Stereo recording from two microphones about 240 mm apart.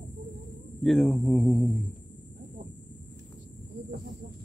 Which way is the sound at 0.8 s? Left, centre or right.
Centre.